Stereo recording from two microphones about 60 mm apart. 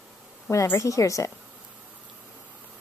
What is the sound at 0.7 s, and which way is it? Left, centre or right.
Speech, left.